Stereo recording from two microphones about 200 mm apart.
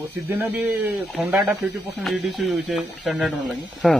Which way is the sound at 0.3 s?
10° right (ahead or behind).